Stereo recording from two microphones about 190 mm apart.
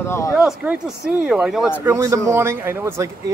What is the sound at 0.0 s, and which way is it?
Speech, 15° left (ahead or behind).